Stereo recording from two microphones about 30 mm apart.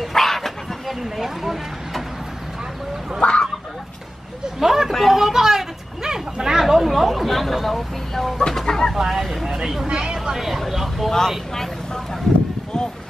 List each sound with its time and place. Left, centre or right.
0.1 s dog: centre
0.8 s a sound: centre
3.2 s fowl: left
4.6 s vehicle: centre
5.0 s a sound: centre
6.6 s chatter: centre
8.1 s chicken: centre
8.9 s vehicle: centre
9.8 s a sound: right
10.3 s vehicle: centre
11.1 s vehicle: centre